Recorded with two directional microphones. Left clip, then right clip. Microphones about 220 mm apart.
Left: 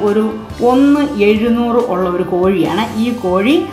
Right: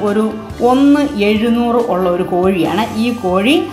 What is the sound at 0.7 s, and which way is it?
A woman's voice, 20° right (ahead or behind).